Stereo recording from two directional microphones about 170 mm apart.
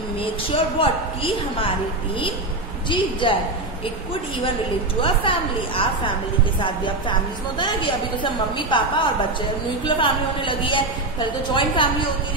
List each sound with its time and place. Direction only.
0.7 s a woman's voice: 30° left (ahead or behind)
2.9 s a woman's voice: 30° left (ahead or behind)
5.0 s a woman's voice: 30° left (ahead or behind)